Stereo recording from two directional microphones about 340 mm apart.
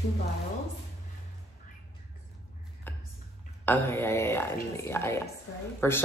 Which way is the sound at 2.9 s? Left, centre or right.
Centre.